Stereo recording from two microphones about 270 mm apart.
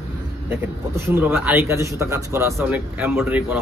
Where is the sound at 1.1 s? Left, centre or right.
Centre.